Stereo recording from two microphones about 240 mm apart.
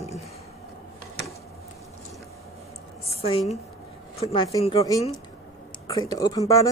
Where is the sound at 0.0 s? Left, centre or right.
Left.